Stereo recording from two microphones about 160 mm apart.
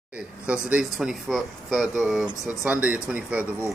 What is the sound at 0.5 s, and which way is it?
Speech, 5° right (ahead or behind).